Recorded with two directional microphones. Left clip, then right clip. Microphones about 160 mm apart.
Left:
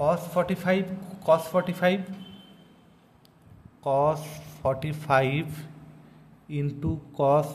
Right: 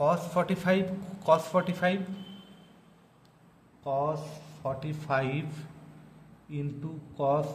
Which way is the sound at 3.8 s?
45° left (ahead or behind).